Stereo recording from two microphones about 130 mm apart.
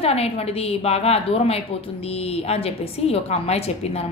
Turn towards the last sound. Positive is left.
turn(degrees=55)  # may be behind; listen again after turning